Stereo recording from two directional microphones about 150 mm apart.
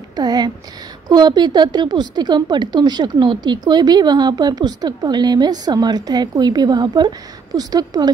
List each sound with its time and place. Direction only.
0.1 s a woman's voice: 25° right (ahead or behind)